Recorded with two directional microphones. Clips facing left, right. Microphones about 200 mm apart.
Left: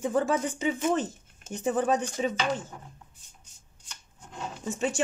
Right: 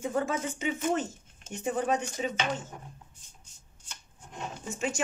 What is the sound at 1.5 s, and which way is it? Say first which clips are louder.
Speech: left 3 dB; 35° left (ahead or behind).